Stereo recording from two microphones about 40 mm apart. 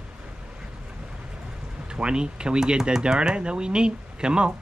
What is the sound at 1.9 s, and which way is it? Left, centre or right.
Speech, right.